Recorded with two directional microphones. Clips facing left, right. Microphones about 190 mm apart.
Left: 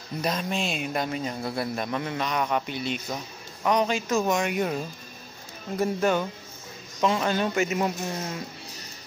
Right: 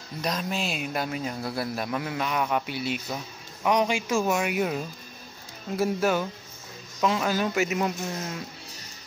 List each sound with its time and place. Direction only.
0.2 s speech: centre (ahead or behind)